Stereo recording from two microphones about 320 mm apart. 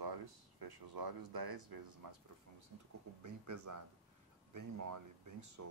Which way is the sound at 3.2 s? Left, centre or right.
Right.